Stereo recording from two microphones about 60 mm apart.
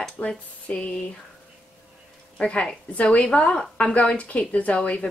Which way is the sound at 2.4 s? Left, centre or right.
Centre.